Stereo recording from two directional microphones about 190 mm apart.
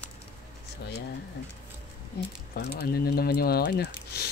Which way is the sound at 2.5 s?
55° left (ahead or behind).